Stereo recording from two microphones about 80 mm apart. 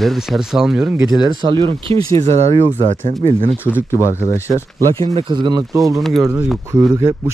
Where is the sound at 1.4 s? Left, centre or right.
Right.